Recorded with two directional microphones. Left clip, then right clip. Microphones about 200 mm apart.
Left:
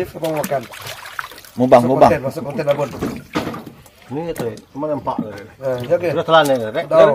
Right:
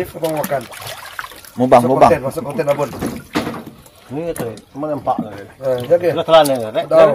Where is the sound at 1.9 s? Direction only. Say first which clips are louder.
Right 1 dB; 10° left (ahead or behind).